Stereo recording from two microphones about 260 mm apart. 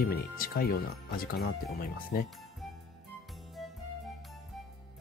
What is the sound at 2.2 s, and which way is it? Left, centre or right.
Music, centre.